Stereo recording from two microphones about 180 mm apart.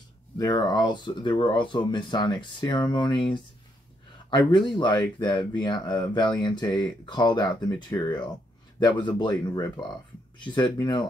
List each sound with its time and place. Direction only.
0.4 s speech: 20° left (ahead or behind)